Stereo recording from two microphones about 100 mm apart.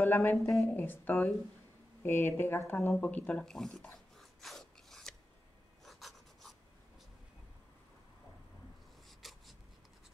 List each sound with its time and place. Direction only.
0.0 s a woman's voice: 20° left (ahead or behind)
3.4 s speech: 5° left (ahead or behind)
3.9 s filing: 5° left (ahead or behind)
9.2 s a sound: centre (ahead or behind)